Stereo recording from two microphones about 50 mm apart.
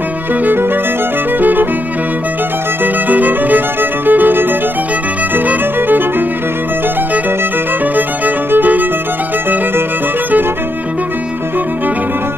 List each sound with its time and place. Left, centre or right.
1.4 s music: right
2.8 s violin: right
5.3 s music: right
8.5 s violin: right